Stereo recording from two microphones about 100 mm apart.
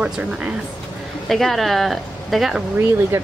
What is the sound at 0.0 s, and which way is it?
Speech, 10° right (ahead or behind).